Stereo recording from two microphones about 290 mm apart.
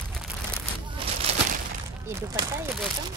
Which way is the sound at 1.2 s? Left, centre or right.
Right.